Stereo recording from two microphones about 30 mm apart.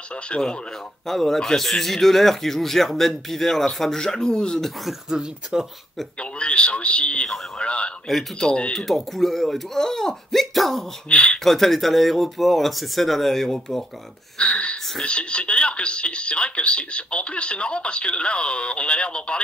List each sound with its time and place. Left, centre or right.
0.3 s speech: left
1.0 s a man's voice: centre
4.0 s speech: left
5.5 s speech: right
6.1 s speech: left
8.8 s a man's voice: centre
10.3 s speech: centre
11.1 s speech: left
11.3 s speech: centre
14.4 s speech: left